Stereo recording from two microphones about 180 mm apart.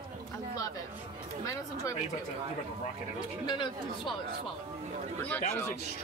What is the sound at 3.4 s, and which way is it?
Speech, 25° left (ahead or behind).